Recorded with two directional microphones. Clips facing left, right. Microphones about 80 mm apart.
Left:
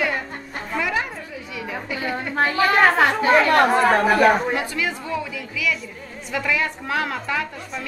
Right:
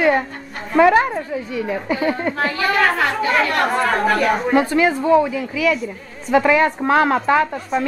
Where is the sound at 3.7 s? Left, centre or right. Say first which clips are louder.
Left 1 dB; centre.